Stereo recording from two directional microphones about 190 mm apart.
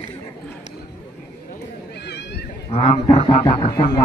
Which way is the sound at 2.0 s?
60° left (ahead or behind).